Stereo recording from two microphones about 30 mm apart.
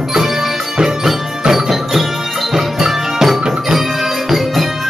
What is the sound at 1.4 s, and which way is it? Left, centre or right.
Music, centre.